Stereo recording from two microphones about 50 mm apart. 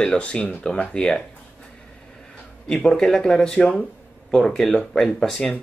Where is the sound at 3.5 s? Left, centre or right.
Centre.